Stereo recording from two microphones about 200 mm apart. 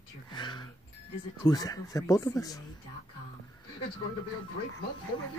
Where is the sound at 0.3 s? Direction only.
20° left (ahead or behind).